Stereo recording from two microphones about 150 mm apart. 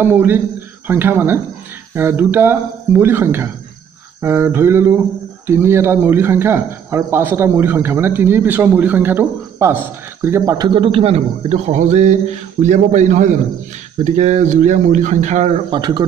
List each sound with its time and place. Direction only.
0.0 s speech: 15° right (ahead or behind)
10.7 s speech: 35° right (ahead or behind)
15.7 s speech: 30° right (ahead or behind)